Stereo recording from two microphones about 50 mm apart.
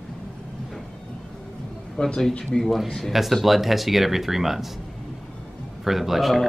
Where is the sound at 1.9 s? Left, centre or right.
Centre.